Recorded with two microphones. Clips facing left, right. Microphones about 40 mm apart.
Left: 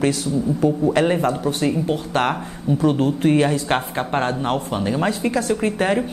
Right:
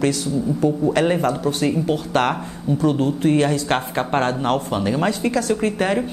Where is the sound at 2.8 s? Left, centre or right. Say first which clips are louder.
Left 1 dB; left.